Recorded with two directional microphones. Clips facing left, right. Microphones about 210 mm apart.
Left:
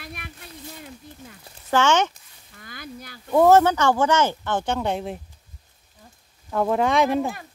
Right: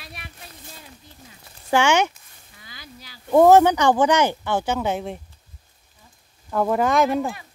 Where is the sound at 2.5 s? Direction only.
55° left (ahead or behind).